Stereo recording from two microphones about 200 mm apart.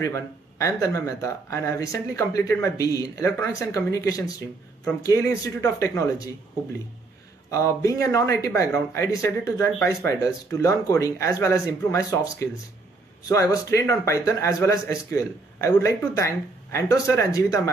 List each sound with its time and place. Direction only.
0.0 s speech: 15° left (ahead or behind)
7.5 s speech: 15° left (ahead or behind)